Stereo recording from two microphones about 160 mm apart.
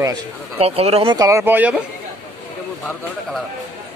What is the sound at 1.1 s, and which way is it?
Speech, 20° right (ahead or behind).